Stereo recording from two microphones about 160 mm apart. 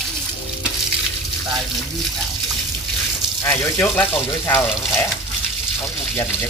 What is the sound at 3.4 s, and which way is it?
Speech, 15° left (ahead or behind).